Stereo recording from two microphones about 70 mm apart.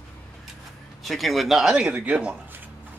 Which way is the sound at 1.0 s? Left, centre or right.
Centre.